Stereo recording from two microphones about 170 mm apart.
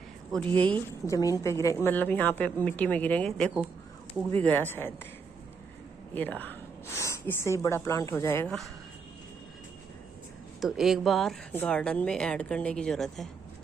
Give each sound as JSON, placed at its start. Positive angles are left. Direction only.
{"t": 0.3, "sound": "a woman's voice", "side_deg": 5}
{"t": 0.8, "sound": "a woman's voice", "side_deg": 20}
{"t": 6.1, "sound": "speech", "side_deg": 10}
{"t": 10.6, "sound": "speech", "side_deg": 0}